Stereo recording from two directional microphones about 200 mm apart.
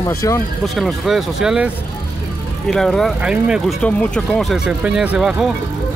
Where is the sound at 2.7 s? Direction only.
Centre (ahead or behind).